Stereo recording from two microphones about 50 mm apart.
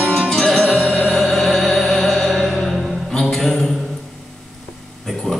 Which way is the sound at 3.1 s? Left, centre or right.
Centre.